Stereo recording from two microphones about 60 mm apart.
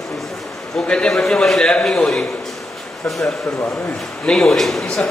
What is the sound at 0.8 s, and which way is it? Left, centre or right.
A man's voice, centre.